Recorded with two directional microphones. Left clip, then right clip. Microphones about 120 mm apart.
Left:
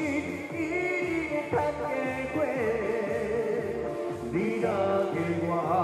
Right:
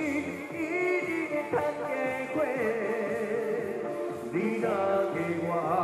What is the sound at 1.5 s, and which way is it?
Music, 45° left (ahead or behind).